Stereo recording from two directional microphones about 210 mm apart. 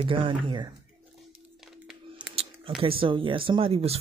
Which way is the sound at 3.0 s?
25° right (ahead or behind).